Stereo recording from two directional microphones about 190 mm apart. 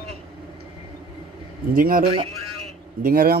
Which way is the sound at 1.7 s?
45° right (ahead or behind).